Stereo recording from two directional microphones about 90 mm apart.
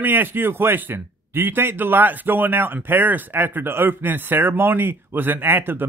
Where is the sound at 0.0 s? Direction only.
20° right (ahead or behind).